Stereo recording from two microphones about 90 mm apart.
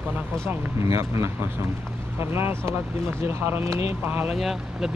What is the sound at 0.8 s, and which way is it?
Speech, 35° right (ahead or behind).